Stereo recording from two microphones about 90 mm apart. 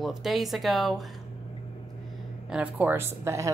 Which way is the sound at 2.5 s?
20° right (ahead or behind).